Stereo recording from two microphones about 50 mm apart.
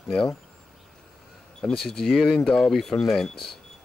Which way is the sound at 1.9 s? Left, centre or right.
Centre.